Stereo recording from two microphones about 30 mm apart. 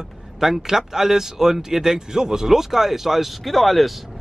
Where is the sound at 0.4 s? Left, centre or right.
Centre.